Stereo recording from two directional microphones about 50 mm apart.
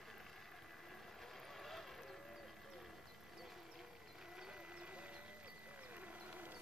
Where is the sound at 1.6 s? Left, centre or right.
Centre.